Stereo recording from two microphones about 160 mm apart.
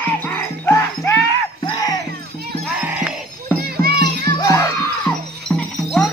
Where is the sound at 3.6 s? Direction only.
70° right (ahead or behind).